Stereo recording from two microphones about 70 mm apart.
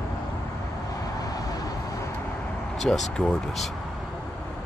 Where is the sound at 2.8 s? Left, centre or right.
Centre.